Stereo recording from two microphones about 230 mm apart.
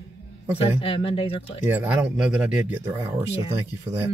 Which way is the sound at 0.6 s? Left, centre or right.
Left.